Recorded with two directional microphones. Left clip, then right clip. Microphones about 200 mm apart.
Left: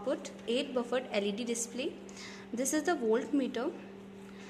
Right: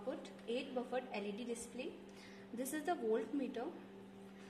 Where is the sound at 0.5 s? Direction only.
30° left (ahead or behind).